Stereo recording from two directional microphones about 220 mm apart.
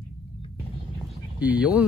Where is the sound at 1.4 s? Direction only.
5° right (ahead or behind).